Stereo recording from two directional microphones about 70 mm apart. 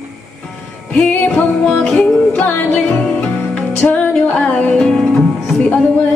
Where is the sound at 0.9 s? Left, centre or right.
Centre.